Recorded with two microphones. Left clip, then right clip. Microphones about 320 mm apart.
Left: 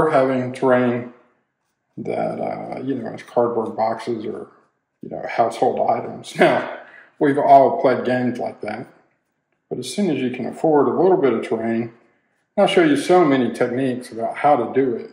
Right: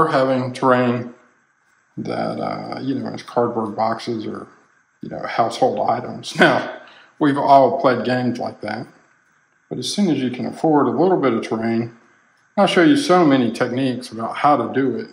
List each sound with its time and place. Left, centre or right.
0.0 s a man's voice: centre
2.0 s speech: right
5.1 s a man's voice: right